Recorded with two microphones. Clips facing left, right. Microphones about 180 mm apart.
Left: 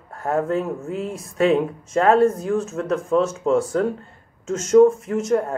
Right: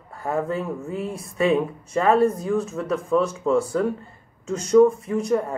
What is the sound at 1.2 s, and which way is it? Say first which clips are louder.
Speech: left 2 dB; 90° left.